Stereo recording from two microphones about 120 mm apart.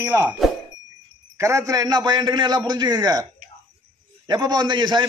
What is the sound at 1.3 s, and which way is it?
A man's voice, 25° right (ahead or behind).